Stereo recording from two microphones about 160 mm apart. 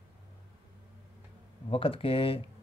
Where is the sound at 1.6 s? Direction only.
35° left (ahead or behind).